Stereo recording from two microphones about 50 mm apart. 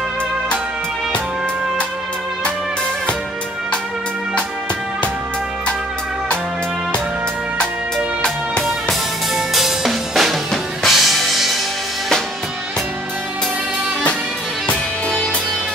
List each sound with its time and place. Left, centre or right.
8.2 s music: centre
9.3 s drum kit: centre